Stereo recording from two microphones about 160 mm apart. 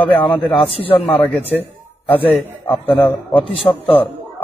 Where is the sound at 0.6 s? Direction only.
35° left (ahead or behind).